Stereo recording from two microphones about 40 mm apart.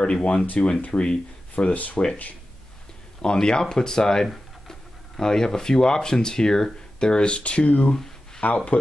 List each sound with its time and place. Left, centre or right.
0.0 s speech: left
1.5 s speech: left
3.2 s speech: centre; by 8.6 s left